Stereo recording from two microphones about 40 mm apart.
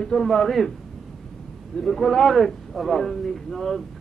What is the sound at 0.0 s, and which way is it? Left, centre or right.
Speech, centre.